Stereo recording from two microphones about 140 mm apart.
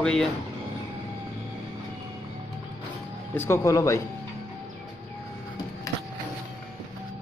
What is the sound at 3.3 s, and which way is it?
Speech, 20° left (ahead or behind).